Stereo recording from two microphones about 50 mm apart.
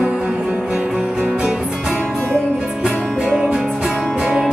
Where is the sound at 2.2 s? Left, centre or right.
Right.